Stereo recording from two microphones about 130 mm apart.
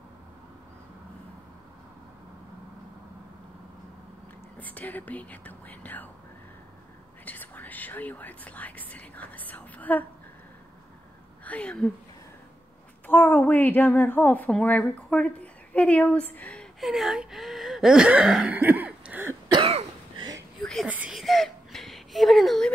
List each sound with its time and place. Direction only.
4.6 s a woman's voice: 10° left (ahead or behind)
7.2 s a woman's voice: 15° left (ahead or behind)
11.4 s speech: 10° left (ahead or behind)
13.0 s a woman's voice: 15° left (ahead or behind)
16.8 s speech: centre (ahead or behind)
19.6 s cough: 50° right (ahead or behind)
20.6 s whispering: 5° left (ahead or behind)
20.9 s a sound: 10° right (ahead or behind)
21.2 s whimper: centre (ahead or behind)